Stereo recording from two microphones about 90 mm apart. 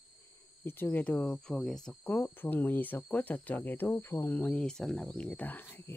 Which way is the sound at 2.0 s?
20° left (ahead or behind).